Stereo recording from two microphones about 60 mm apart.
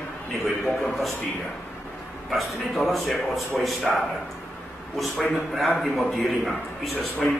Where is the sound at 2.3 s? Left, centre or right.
Centre.